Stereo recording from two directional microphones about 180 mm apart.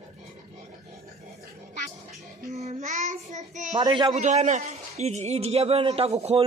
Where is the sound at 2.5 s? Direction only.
40° right (ahead or behind).